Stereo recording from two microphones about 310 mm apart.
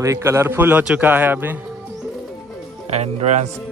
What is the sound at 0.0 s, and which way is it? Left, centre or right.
A man's voice, centre.